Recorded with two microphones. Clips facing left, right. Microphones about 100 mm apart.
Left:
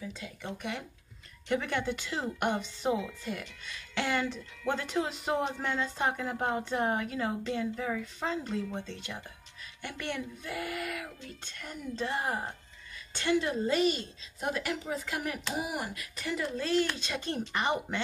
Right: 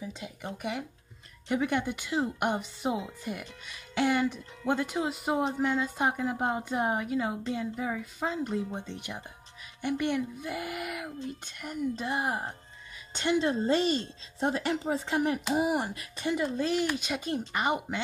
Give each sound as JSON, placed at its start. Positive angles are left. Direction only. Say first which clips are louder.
{"t": 0.0, "sound": "speech", "louder": "right 2 dB", "side_deg": -20}
{"t": 0.6, "sound": "a woman's voice", "louder": "right 3 dB", "side_deg": -10}